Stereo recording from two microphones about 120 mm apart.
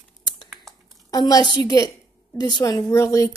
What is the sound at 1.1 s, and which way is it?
Speech, 35° left (ahead or behind).